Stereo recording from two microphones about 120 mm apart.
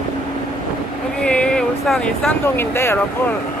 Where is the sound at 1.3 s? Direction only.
10° left (ahead or behind).